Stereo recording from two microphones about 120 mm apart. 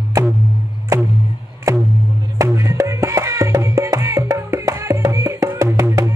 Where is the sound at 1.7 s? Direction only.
25° right (ahead or behind).